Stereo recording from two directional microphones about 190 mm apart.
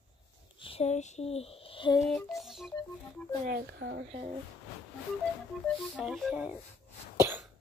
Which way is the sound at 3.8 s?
65° right (ahead or behind).